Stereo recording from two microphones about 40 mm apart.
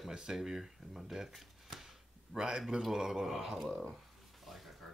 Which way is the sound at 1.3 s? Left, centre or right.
Centre.